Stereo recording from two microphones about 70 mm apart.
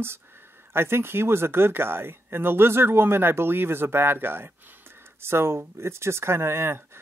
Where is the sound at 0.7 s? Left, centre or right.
Right.